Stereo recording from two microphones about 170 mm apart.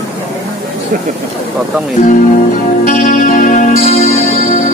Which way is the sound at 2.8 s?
45° left (ahead or behind).